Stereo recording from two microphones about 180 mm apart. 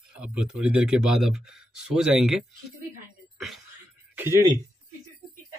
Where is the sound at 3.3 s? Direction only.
Centre (ahead or behind).